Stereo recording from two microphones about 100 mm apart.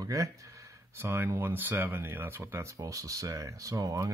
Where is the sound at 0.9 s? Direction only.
25° right (ahead or behind).